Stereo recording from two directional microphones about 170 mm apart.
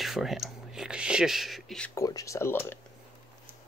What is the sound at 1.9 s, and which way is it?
Speech, 20° left (ahead or behind).